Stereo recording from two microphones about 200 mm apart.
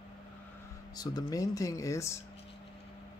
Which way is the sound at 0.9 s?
20° left (ahead or behind).